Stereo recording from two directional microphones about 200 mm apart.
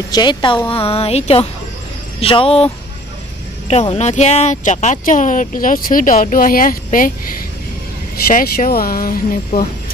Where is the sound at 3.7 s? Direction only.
35° left (ahead or behind).